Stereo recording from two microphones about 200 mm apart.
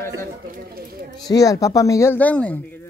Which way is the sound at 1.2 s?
15° left (ahead or behind).